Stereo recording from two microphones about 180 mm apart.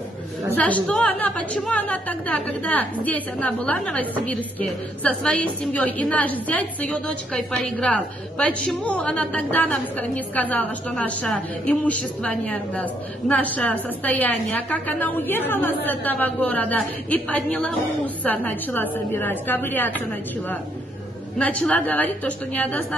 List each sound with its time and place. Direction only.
0.6 s a woman's voice: 10° left (ahead or behind)